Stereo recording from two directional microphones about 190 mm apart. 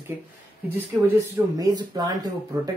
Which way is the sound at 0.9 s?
10° right (ahead or behind).